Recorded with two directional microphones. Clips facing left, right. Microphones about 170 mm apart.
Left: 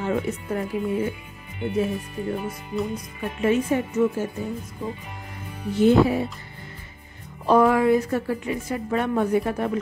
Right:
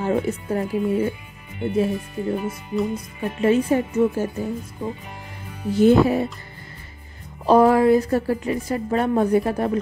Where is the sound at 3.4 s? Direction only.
35° right (ahead or behind).